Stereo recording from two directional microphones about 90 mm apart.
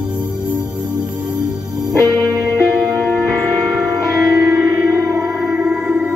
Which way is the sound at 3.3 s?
Centre (ahead or behind).